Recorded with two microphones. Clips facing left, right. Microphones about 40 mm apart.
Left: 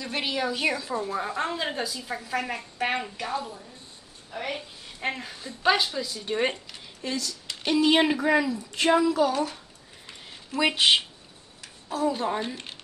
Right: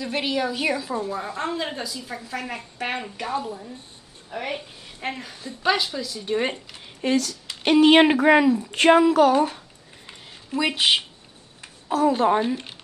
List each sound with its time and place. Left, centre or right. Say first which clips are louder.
0.0 s a woman's voice: right 4 dB; centre
1.0 s a woman's voice: right 1 dB; centre
3.3 s a woman's voice: right 4 dB; centre
4.6 s a woman's voice: even; centre
7.0 s speech: right 9 dB; right
7.6 s speech: right 6 dB; right
8.7 s a woman's voice: right 5 dB; right
9.3 s a child's voice: right 7 dB; right
10.0 s a sound: right 1 dB; centre
10.6 s a woman's voice: even; centre
11.9 s a woman's voice: right 7 dB; right
12.4 s speech: right 8 dB; centre